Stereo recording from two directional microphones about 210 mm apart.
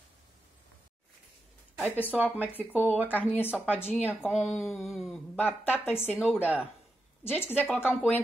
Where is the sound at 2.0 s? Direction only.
5° right (ahead or behind).